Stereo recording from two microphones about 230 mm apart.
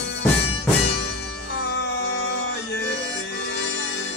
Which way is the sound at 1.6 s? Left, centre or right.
Left.